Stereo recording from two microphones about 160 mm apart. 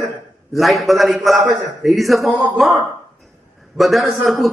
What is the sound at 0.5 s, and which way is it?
A man's voice, centre (ahead or behind).